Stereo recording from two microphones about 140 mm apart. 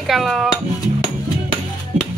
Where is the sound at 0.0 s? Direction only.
Centre (ahead or behind).